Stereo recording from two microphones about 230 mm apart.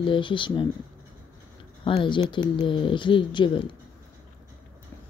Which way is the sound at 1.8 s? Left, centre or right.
Left.